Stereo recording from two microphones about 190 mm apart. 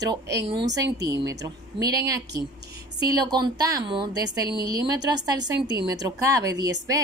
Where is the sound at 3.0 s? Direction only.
20° right (ahead or behind).